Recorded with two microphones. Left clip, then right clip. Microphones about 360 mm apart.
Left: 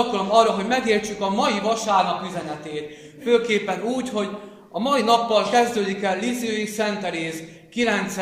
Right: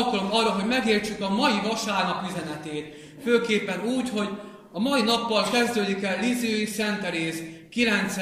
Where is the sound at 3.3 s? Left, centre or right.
Centre.